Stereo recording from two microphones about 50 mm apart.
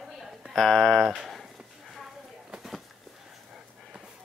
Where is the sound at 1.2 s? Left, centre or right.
Centre.